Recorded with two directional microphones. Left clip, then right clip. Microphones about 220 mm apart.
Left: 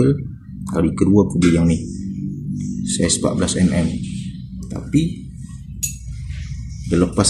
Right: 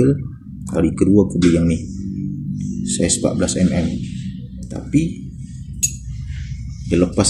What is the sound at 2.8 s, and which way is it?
Speech, 5° left (ahead or behind).